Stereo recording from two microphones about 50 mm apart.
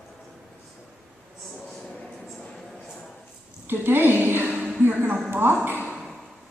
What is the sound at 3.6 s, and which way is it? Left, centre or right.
A woman's voice, right.